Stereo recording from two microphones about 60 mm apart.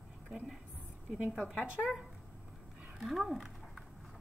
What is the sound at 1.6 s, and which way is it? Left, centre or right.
Speech, centre.